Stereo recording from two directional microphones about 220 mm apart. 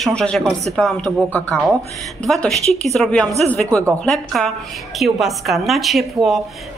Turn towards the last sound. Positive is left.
turn(degrees=0)  # may be behind; listen again after turning